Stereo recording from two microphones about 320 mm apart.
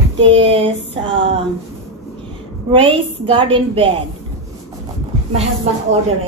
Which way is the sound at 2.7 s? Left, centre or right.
Centre.